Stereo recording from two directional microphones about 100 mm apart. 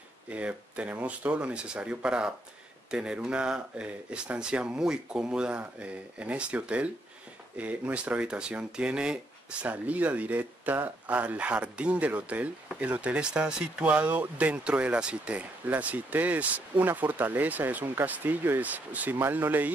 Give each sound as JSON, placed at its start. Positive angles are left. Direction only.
{"t": 0.3, "sound": "speech", "side_deg": -15}